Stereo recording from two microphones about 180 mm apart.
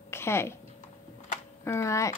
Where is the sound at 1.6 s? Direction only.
15° left (ahead or behind).